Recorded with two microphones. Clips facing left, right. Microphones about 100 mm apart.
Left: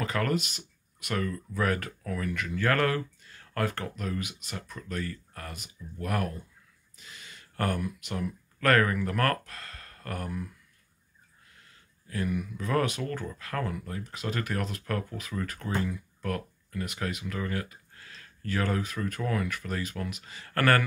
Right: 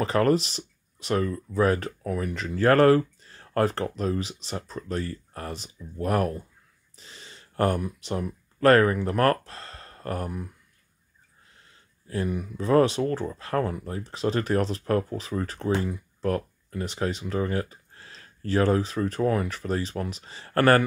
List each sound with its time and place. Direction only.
0.0 s speech: 30° right (ahead or behind)
11.5 s speech: 30° right (ahead or behind)